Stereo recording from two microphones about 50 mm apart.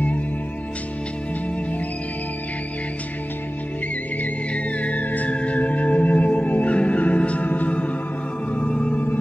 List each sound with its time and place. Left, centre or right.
4.7 s music: left